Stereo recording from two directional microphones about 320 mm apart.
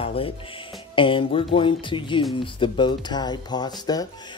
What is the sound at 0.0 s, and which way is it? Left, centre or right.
Music, centre.